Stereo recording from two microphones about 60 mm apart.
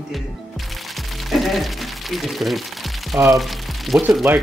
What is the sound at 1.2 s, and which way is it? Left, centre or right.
Speech, centre.